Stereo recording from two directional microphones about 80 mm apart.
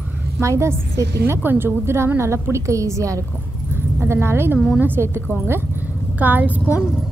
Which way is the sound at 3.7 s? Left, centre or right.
Right.